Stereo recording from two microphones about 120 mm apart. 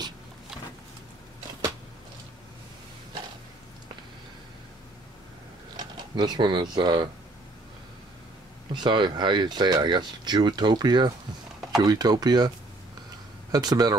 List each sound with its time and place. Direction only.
5.8 s speech: 40° right (ahead or behind)
8.7 s speech: 40° right (ahead or behind)